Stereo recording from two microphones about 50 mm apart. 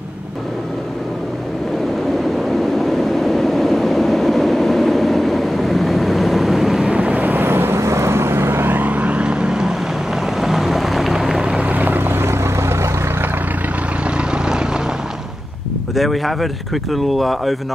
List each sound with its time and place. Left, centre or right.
2.8 s train: centre
6.9 s vehicle: right
7.8 s vehicle: right
8.7 s vehicle: right; by 9.8 s centre
10.4 s boat: centre
11.6 s boat: right
14.1 s vehicle: centre
15.9 s speech: centre